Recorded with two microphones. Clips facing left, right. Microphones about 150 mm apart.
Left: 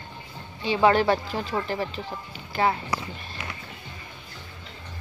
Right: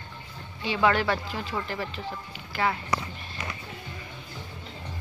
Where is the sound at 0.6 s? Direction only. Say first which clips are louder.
Left 4 dB; 25° left (ahead or behind).